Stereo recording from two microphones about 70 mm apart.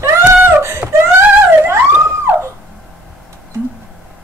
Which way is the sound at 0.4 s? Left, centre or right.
Right.